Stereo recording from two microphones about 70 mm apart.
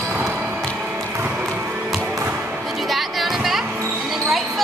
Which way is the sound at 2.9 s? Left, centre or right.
Centre.